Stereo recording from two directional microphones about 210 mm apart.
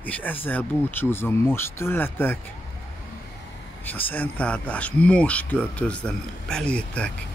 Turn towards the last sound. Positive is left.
turn(degrees=5)  # may be behind; listen again after turning